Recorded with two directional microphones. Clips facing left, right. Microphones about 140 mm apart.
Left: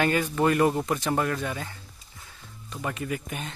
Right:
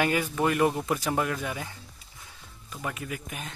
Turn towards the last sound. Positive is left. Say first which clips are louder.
# left 5 dB
turn(degrees=0)  # may be behind; listen again after turning